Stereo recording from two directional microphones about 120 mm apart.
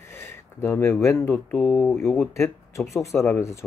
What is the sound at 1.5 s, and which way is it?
Speech, 10° left (ahead or behind).